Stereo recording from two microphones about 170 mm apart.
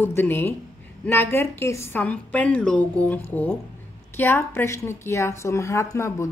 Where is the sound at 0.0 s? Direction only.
15° left (ahead or behind).